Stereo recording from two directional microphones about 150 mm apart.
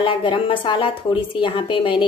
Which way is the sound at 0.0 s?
35° left (ahead or behind).